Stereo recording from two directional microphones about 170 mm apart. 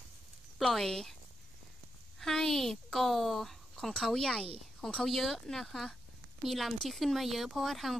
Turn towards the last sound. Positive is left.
turn(degrees=0)  # may be behind; listen again after turning